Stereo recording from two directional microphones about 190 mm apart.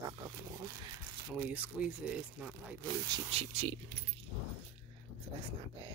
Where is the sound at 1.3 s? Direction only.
5° right (ahead or behind).